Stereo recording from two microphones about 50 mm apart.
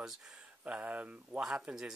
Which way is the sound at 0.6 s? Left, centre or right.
Right.